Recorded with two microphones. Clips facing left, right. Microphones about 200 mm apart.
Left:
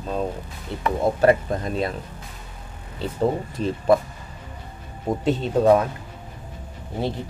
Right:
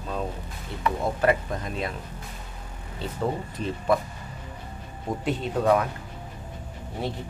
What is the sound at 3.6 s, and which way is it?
Speech, 35° left (ahead or behind).